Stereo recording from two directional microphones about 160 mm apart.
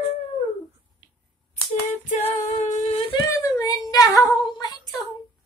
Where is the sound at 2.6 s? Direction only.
50° left (ahead or behind).